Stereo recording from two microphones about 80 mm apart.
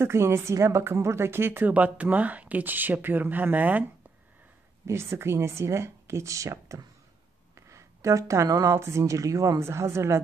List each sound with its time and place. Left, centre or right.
0.0 s a woman's voice: right
4.8 s speech: right
8.7 s speech: right